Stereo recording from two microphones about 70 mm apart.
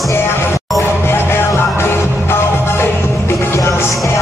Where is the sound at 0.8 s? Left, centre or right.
Left.